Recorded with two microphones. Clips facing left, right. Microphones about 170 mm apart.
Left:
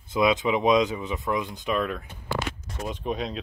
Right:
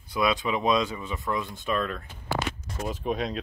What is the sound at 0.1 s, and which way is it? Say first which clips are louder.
Speech: left 4 dB; 20° left (ahead or behind).